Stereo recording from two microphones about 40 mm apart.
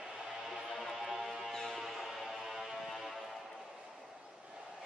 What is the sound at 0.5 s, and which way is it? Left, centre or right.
Music, centre.